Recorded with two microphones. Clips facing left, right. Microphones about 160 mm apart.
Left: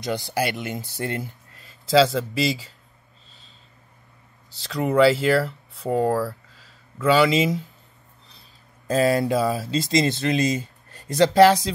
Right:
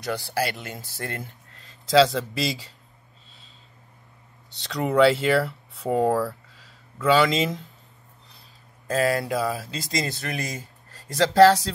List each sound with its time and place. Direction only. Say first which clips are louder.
0.0 s speech: left 2 dB; 20° left (ahead or behind)
1.6 s speech: even; 5° left (ahead or behind)
4.6 s speech: left 1 dB; centre (ahead or behind)
8.8 s speech: left 4 dB; 25° left (ahead or behind)